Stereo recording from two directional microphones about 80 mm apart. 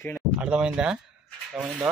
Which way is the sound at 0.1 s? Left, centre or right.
Centre.